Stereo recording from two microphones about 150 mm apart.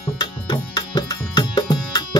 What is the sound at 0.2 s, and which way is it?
Music, 30° left (ahead or behind).